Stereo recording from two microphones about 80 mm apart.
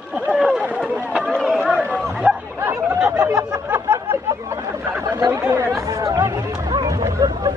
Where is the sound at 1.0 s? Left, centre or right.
Centre.